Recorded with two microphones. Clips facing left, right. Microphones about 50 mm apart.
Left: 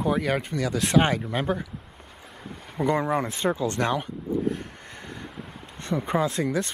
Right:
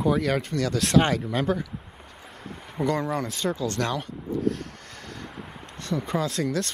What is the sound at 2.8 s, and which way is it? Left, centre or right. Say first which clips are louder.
Speech: left 2 dB; centre.